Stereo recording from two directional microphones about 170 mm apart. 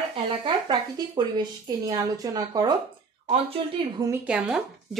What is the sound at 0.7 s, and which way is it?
A woman's voice, 25° right (ahead or behind).